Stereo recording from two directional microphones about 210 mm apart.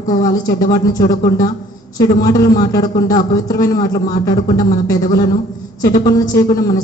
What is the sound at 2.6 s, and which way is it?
A woman's voice, 15° left (ahead or behind).